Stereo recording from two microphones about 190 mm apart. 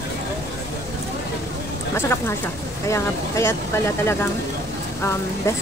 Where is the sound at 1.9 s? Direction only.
15° left (ahead or behind).